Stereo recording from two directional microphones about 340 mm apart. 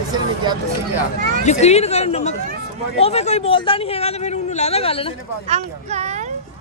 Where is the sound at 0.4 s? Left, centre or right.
Centre.